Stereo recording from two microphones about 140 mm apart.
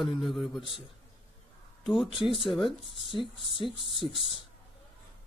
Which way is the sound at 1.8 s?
Centre (ahead or behind).